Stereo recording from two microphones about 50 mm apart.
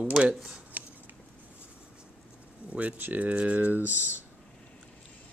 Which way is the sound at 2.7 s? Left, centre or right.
Right.